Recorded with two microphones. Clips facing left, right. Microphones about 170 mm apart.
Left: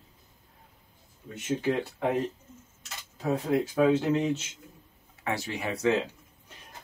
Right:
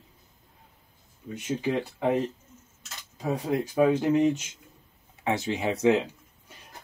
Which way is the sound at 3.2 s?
10° right (ahead or behind).